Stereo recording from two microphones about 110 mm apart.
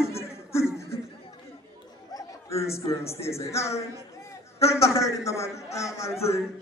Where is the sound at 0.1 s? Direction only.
25° left (ahead or behind).